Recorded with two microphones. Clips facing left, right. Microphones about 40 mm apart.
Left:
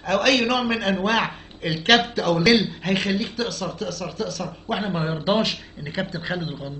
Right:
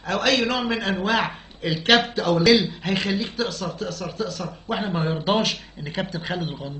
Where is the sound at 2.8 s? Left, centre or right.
Left.